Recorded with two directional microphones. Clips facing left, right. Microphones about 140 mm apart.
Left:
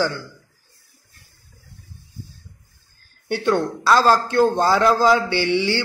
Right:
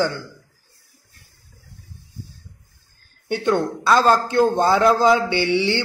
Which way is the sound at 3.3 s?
20° right (ahead or behind).